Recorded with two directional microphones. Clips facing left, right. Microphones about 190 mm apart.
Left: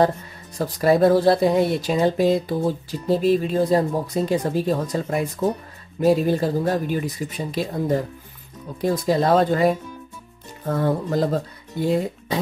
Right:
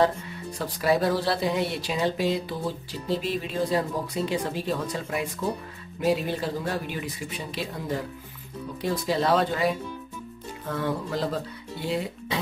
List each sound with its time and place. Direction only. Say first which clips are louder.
0.6 s speech: left 7 dB; 45° left (ahead or behind)